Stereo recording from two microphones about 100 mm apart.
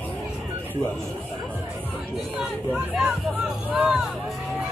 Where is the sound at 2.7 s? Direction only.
5° right (ahead or behind).